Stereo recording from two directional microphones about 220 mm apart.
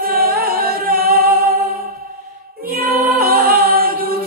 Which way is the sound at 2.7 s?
45° right (ahead or behind).